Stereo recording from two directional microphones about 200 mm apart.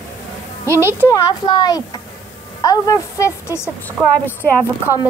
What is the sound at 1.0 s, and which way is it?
A woman's voice, 20° left (ahead or behind).